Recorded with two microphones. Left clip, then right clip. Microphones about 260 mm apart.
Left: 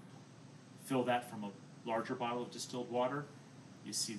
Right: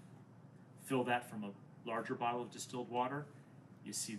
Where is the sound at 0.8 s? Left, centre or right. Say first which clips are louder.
Left 2 dB; centre.